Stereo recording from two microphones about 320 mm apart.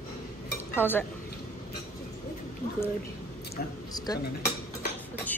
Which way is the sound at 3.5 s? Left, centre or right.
Centre.